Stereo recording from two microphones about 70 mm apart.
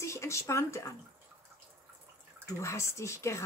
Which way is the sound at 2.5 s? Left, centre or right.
Left.